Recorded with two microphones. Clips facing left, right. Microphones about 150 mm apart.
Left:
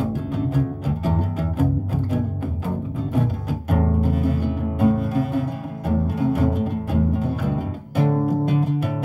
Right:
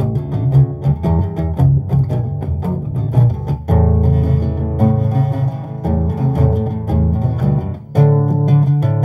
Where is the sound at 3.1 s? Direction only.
40° right (ahead or behind).